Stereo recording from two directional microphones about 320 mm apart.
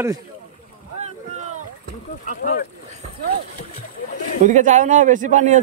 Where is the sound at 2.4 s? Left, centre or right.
Left.